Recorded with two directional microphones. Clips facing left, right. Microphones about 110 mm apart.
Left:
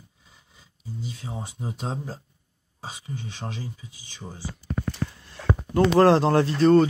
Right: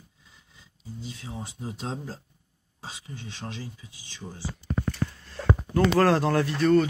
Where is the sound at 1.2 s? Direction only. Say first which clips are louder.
Left 2 dB; 30° left (ahead or behind).